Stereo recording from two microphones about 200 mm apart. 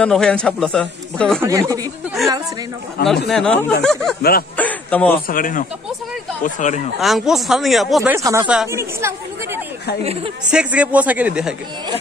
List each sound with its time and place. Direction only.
0.0 s speech: 5° left (ahead or behind)
1.4 s speech: 15° right (ahead or behind)
3.3 s speech: 5° left (ahead or behind)
4.2 s speech: 50° left (ahead or behind)
4.6 s a man's voice: 10° left (ahead or behind)
5.3 s speech: 45° left (ahead or behind)
7.0 s speech: centre (ahead or behind)
8.2 s speech: 15° right (ahead or behind)